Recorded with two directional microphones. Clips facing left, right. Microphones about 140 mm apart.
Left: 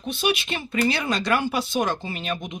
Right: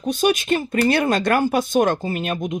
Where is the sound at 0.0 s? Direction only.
45° right (ahead or behind).